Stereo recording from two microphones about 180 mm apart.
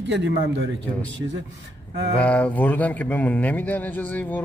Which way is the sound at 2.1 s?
5° left (ahead or behind).